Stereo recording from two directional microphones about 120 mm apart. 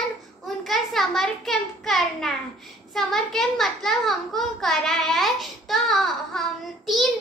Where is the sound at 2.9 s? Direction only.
5° left (ahead or behind).